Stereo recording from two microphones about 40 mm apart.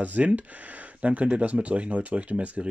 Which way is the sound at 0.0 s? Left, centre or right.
Right.